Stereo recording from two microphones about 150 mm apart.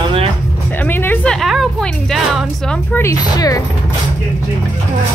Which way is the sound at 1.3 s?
Centre (ahead or behind).